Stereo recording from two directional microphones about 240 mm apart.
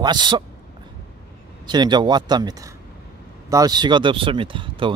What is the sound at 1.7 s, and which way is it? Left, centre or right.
Speech, centre.